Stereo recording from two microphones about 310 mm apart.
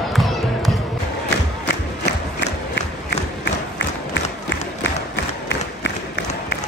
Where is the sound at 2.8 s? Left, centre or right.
Left.